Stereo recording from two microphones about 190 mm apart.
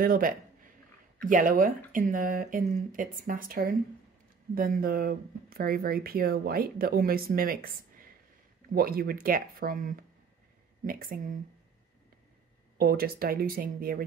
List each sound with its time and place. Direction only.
0.0 s speech: 50° right (ahead or behind)
12.7 s speech: 50° right (ahead or behind)